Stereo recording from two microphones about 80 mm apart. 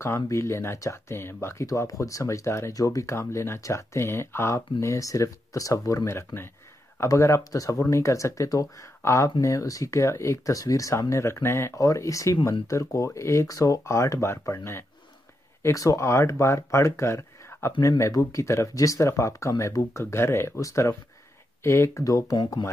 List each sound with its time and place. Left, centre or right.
0.0 s speech: left
15.6 s speech: left